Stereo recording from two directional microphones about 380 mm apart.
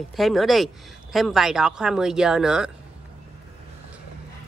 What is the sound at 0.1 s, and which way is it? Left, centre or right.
Speech, centre.